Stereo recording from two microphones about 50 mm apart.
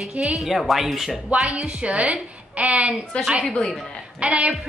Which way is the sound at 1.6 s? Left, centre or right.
Right.